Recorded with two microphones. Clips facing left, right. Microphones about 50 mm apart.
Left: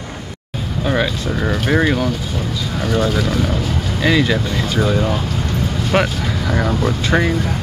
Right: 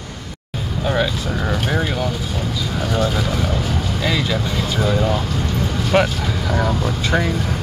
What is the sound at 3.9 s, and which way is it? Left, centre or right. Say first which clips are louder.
Speech: left 7 dB; centre.